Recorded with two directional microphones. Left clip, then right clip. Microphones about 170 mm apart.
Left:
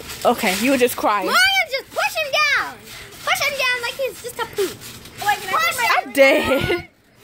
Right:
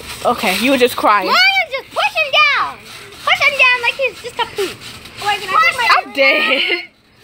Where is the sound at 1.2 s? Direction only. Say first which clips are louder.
Right 4 dB; 70° left (ahead or behind); by 4.5 s 90° left.